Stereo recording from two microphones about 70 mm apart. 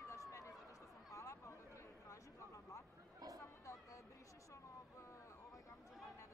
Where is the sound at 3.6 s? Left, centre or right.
Left.